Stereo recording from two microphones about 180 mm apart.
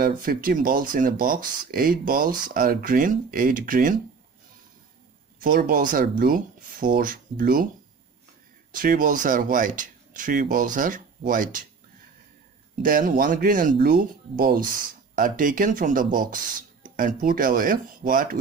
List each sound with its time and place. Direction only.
0.0 s speech: 50° right (ahead or behind)
5.4 s speech: 50° right (ahead or behind)
8.7 s speech: 50° right (ahead or behind)
12.8 s speech: 50° right (ahead or behind)